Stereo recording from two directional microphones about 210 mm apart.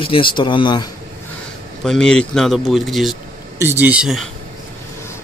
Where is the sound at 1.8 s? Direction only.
5° left (ahead or behind).